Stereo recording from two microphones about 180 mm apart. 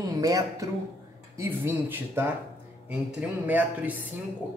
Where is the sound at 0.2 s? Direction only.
20° right (ahead or behind).